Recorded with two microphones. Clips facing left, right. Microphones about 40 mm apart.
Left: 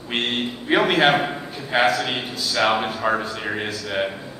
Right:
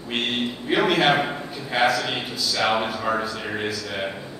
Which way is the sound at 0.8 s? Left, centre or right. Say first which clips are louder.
Left 1 dB; centre.